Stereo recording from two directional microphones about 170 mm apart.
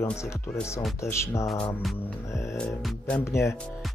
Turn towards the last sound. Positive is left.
turn(degrees=15)  # may be behind; listen again after turning